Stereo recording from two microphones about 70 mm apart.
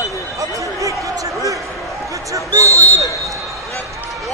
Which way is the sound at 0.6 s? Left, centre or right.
Right.